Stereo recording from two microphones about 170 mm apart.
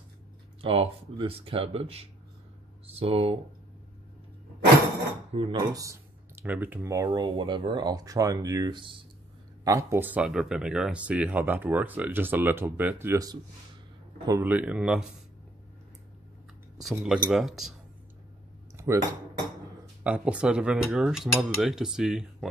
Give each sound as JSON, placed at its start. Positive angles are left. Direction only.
{"t": 0.6, "sound": "speech", "side_deg": -35}
{"t": 5.3, "sound": "speech", "side_deg": -30}
{"t": 5.7, "sound": "speech", "side_deg": -20}
{"t": 16.9, "sound": "cutlery", "side_deg": -5}
{"t": 18.9, "sound": "speech", "side_deg": -15}
{"t": 20.0, "sound": "cutlery", "side_deg": -5}